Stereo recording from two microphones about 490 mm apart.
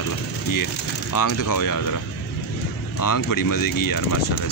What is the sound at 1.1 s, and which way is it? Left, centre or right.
Speech, left.